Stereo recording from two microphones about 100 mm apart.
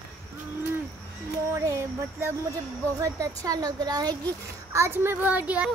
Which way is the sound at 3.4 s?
40° right (ahead or behind).